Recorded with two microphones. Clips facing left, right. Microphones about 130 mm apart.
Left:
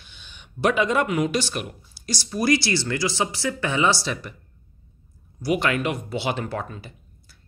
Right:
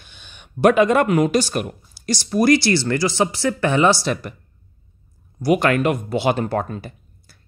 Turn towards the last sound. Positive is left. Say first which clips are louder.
# right 7 dB
turn(degrees=-50)  # may be behind; listen again after turning